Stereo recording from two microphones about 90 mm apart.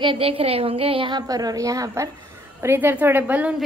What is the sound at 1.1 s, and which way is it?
Speech, 45° right (ahead or behind).